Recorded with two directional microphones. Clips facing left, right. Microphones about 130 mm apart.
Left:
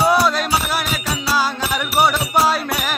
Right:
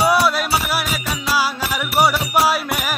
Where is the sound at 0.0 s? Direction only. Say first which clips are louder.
Even; 5° right (ahead or behind).